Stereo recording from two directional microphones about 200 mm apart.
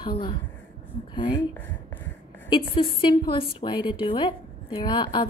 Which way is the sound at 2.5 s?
25° left (ahead or behind).